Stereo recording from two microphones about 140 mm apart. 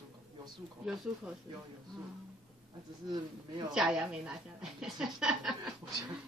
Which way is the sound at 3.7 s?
5° right (ahead or behind).